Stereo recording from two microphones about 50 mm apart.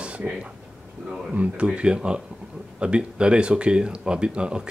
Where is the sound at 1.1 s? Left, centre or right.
Centre.